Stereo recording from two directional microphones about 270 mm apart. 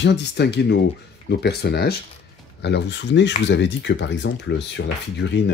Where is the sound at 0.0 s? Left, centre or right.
Left.